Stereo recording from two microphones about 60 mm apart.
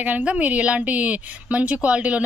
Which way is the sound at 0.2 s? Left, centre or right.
Right.